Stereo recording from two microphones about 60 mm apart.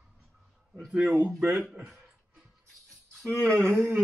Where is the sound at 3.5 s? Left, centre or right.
Right.